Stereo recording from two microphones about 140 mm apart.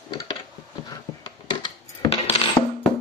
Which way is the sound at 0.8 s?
30° left (ahead or behind).